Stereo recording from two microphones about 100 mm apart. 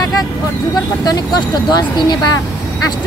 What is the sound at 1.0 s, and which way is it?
Speech, 45° left (ahead or behind).